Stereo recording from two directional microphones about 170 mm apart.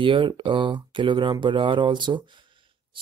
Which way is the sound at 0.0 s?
30° right (ahead or behind).